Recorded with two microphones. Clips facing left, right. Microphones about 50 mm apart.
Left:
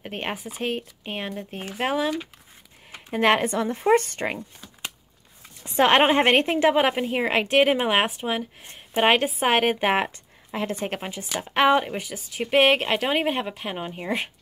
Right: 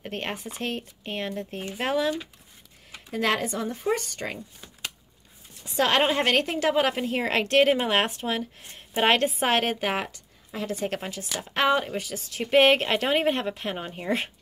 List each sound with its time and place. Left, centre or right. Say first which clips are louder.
0.0 s speech: left 2 dB; centre
2.9 s speech: left 5 dB; left
5.6 s a woman's voice: left 5 dB; left
10.9 s speech: left 1 dB; left